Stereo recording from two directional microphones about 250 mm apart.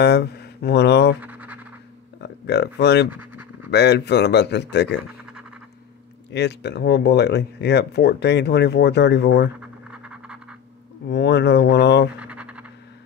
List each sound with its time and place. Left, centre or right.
0.0 s speech: left
1.2 s scratch: centre
2.2 s speech: left
6.3 s speech: left
9.6 s scratch: centre
11.1 s speech: left
12.2 s scratch: centre